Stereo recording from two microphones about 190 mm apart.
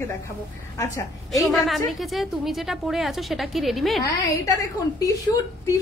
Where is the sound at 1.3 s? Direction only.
Centre (ahead or behind).